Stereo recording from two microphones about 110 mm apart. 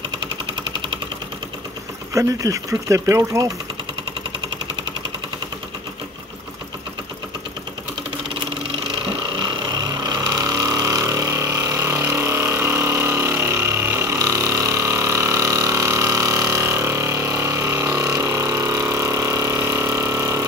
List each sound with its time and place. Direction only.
2.1 s speech: 30° right (ahead or behind)
10.3 s vehicle: 35° right (ahead or behind)